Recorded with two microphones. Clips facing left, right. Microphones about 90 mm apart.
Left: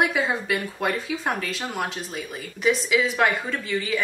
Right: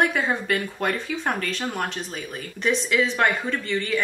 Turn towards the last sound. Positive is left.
turn(degrees=5)  # may be behind; listen again after turning